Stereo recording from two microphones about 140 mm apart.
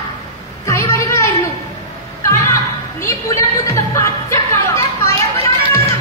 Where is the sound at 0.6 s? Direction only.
20° left (ahead or behind).